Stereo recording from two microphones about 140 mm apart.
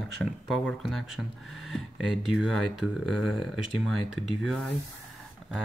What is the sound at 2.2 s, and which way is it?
Speech, centre (ahead or behind).